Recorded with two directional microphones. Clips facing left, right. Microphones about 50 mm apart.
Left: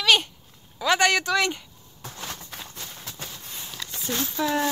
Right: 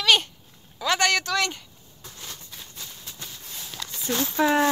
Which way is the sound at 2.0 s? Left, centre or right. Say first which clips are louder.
Left 5 dB; left.